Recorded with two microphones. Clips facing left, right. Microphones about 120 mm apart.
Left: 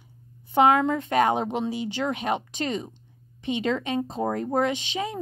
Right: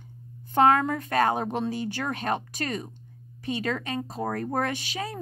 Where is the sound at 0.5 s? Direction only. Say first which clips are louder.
Left 1 dB; 15° left (ahead or behind).